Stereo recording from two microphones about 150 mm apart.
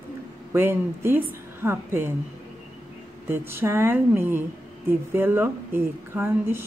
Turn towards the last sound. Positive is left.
turn(degrees=-15)  # may be behind; listen again after turning